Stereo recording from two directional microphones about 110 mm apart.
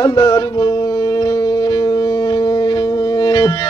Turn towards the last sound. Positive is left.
turn(degrees=40)  # may be behind; listen again after turning